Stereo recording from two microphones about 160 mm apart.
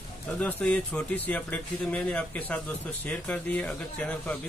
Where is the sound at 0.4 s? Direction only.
10° left (ahead or behind).